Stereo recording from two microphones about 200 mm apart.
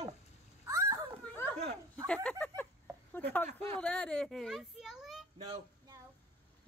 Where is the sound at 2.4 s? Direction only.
10° left (ahead or behind).